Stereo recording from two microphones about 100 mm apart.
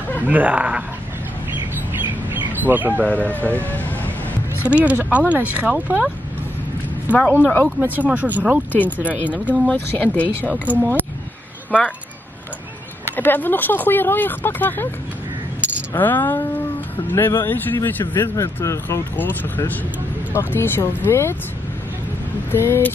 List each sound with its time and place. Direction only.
0.3 s speech: 15° right (ahead or behind)
2.5 s speech: 20° right (ahead or behind)
3.5 s speech: 15° left (ahead or behind)
4.6 s speech: 15° right (ahead or behind)
7.1 s speech: 15° left (ahead or behind)
7.6 s speech: 15° right (ahead or behind)
10.0 s speech: 15° left (ahead or behind)
10.7 s speech: 15° right (ahead or behind)
13.1 s speech: 20° left (ahead or behind)
16.0 s speech: 20° left (ahead or behind)
22.5 s speech: 25° left (ahead or behind)